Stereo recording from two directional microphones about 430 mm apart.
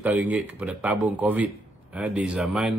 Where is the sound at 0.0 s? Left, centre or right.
Centre.